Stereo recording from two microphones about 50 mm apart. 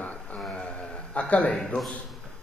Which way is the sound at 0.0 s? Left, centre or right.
Left.